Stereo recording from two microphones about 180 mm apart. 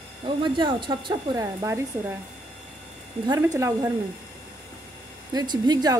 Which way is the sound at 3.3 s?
15° right (ahead or behind).